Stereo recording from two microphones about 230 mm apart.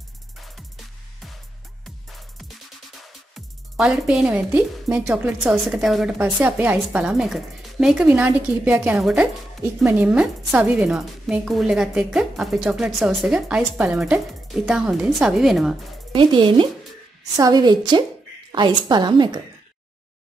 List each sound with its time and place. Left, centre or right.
2.1 s music: centre
3.3 s speech: centre
16.1 s a woman's voice: right